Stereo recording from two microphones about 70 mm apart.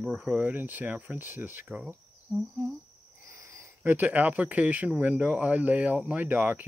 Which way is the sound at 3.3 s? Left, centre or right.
Right.